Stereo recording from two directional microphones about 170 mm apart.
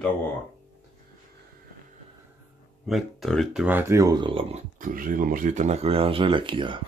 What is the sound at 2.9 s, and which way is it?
Speech, centre (ahead or behind).